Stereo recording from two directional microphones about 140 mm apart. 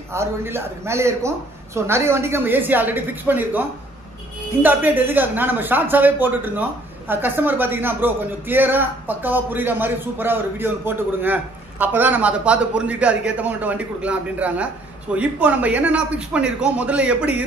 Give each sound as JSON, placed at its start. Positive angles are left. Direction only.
{"t": 0.1, "sound": "speech", "side_deg": -20}
{"t": 4.6, "sound": "speech", "side_deg": -15}